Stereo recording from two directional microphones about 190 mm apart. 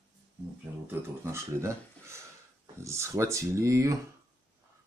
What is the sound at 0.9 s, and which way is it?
Speech, 15° right (ahead or behind).